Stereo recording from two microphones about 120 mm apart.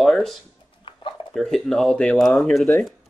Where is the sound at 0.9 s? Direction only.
45° left (ahead or behind).